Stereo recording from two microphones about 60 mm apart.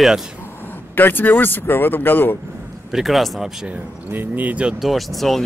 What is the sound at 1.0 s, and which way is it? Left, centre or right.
Speech, left.